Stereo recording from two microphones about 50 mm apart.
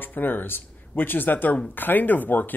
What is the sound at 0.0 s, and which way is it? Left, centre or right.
Speech, left.